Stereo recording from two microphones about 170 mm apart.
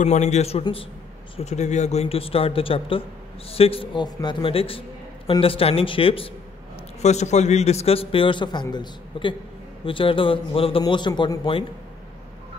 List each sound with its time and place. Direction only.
0.0 s a man's voice: 40° left (ahead or behind)